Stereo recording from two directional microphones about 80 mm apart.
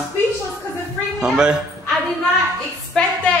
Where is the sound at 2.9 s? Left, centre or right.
Centre.